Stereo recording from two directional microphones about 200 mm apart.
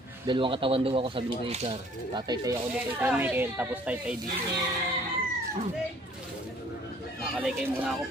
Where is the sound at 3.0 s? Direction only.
10° right (ahead or behind).